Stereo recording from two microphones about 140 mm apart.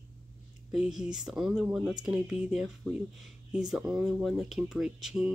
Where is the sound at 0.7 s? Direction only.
5° right (ahead or behind).